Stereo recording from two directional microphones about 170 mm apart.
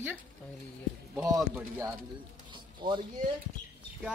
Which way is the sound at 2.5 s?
25° right (ahead or behind).